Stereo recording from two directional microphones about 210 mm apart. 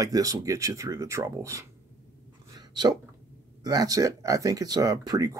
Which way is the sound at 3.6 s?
20° right (ahead or behind).